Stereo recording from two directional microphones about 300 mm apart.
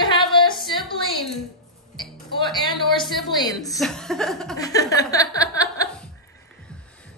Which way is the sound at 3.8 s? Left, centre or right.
Centre.